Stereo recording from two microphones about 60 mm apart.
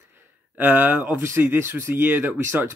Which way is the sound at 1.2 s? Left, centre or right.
Right.